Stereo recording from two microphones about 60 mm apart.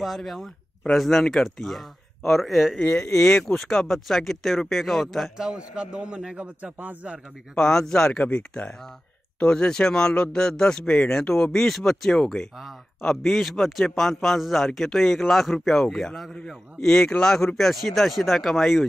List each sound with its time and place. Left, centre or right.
0.0 s a man's voice: centre
2.9 s speech: left
3.2 s a man's voice: centre
5.4 s a man's voice: centre
7.5 s a man's voice: centre